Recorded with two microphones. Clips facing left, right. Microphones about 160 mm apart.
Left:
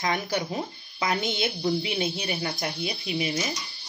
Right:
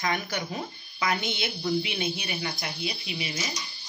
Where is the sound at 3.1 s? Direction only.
45° left (ahead or behind).